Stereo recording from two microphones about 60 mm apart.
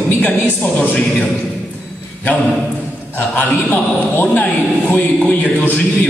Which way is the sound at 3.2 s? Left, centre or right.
Left.